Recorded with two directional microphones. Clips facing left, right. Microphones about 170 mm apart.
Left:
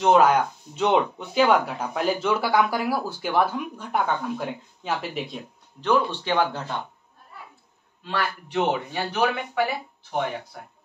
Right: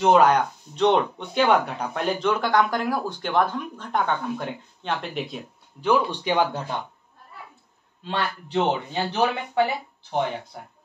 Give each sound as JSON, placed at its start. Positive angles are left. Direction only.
{"t": 0.0, "sound": "speech", "side_deg": 0}
{"t": 5.9, "sound": "speech", "side_deg": -10}
{"t": 8.0, "sound": "speech", "side_deg": -25}